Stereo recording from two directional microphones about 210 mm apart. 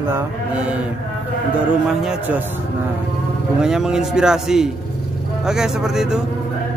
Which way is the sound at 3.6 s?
5° right (ahead or behind).